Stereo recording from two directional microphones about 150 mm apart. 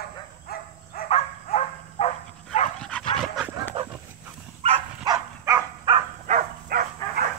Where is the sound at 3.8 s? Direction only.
40° right (ahead or behind).